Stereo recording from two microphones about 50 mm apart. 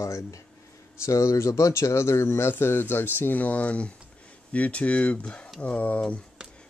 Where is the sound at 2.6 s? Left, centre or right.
Left.